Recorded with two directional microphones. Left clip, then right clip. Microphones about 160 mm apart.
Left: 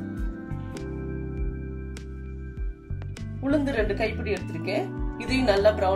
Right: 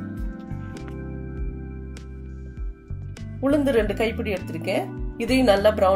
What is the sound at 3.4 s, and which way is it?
Speech, 50° right (ahead or behind).